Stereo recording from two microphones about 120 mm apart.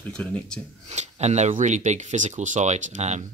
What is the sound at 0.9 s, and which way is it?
Speech, 70° right (ahead or behind).